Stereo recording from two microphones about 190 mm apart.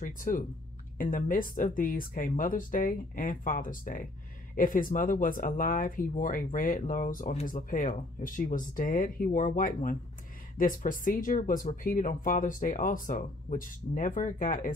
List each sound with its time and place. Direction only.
0.0 s speech: 45° left (ahead or behind)